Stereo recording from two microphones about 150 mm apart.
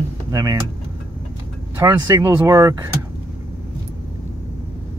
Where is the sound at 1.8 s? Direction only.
20° right (ahead or behind).